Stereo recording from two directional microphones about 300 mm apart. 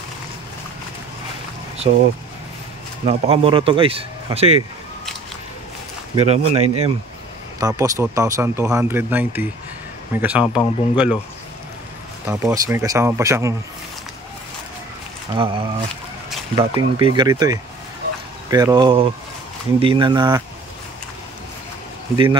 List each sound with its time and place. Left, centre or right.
1.8 s speech: centre
3.1 s speech: centre
6.1 s speech: centre
7.6 s speech: centre
12.3 s speech: centre
15.3 s speech: centre
22.1 s speech: centre